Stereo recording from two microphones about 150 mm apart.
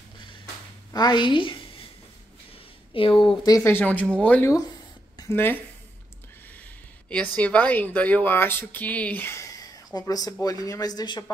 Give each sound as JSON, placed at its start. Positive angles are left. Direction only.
{"t": 0.9, "sound": "a woman's voice", "side_deg": 30}
{"t": 2.9, "sound": "speech", "side_deg": 35}
{"t": 3.3, "sound": "speech", "side_deg": 25}
{"t": 7.1, "sound": "a man's voice", "side_deg": 10}